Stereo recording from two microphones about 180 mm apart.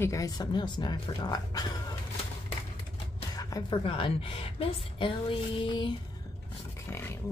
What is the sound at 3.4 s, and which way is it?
Speech, 20° left (ahead or behind).